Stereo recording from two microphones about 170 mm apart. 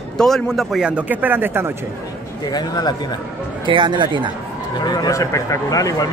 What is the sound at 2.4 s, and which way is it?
Speech, 25° left (ahead or behind).